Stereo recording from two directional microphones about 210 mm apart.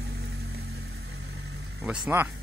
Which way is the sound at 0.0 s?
55° right (ahead or behind).